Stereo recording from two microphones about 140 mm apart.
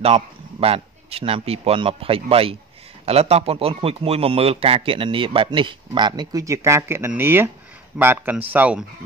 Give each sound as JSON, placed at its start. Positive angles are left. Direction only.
{"t": 0.0, "sound": "a man's voice", "side_deg": -45}